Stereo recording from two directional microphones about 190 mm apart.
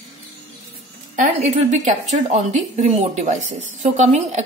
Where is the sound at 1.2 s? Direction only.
40° right (ahead or behind).